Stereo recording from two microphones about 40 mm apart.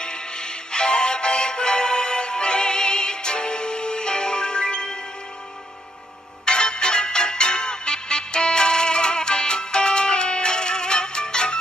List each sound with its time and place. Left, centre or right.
0.0 s music: left
6.4 s music: left